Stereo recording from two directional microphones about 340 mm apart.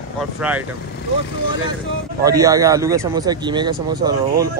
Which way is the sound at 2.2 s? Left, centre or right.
Centre.